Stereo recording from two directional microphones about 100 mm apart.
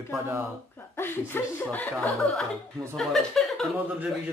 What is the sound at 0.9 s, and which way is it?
Speech, 20° left (ahead or behind).